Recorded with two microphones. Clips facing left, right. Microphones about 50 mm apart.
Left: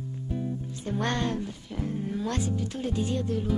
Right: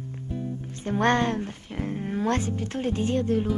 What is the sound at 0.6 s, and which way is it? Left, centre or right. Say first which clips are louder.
Speech: right 4 dB; right.